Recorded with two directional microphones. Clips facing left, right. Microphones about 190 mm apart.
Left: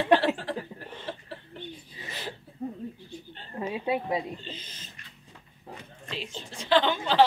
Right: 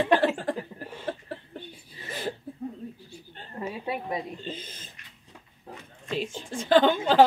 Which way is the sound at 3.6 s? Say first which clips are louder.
Left 3 dB; 20° left (ahead or behind).